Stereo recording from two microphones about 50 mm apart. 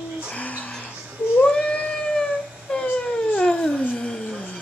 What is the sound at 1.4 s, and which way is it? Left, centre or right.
Cat, centre.